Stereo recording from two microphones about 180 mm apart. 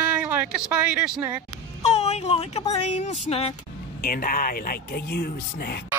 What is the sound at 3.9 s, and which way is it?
Speech, 55° left (ahead or behind).